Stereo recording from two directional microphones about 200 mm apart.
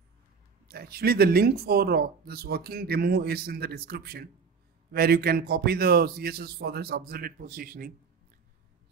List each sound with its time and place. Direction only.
0.7 s speech: 50° right (ahead or behind)